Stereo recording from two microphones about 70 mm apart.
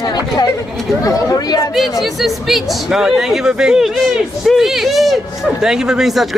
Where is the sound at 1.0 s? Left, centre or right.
Left.